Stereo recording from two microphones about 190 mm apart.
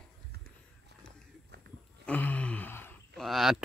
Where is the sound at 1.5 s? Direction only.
60° right (ahead or behind).